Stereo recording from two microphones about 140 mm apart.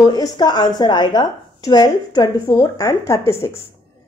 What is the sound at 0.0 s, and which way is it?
Speech, 30° left (ahead or behind).